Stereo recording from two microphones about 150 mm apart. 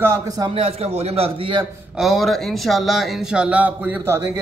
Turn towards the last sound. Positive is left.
turn(degrees=-15)  # may be behind; listen again after turning